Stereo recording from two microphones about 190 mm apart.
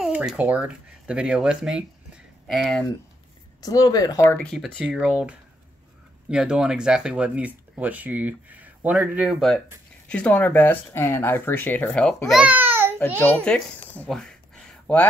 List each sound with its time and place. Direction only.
0.0 s speech: 5° right (ahead or behind)
3.6 s speech: 20° left (ahead or behind)
4.4 s speech: 5° left (ahead or behind)
6.3 s speech: 5° right (ahead or behind)
13.4 s a sound: 5° left (ahead or behind)